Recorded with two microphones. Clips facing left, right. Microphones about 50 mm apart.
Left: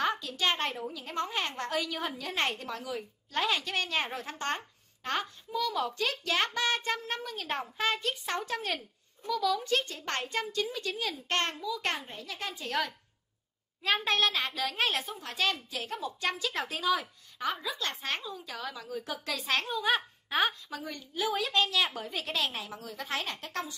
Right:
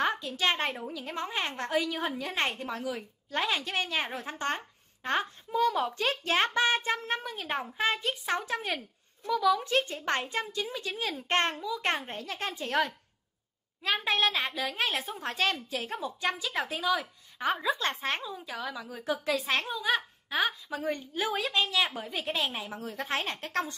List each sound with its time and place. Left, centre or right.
0.0 s a child's voice: right
3.9 s speech: centre
4.2 s a child's voice: right
5.5 s a child's voice: right
12.1 s a woman's voice: right
14.0 s a woman's voice: centre
15.1 s a woman's voice: right
16.0 s a woman's voice: centre
17.4 s a child's voice: right
18.2 s a woman's voice: centre
19.5 s a child's voice: centre
20.8 s a woman's voice: right
21.5 s a child's voice: centre
22.8 s a woman's voice: right